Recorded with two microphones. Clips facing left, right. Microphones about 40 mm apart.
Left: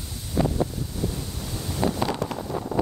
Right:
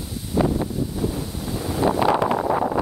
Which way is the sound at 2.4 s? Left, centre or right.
Right.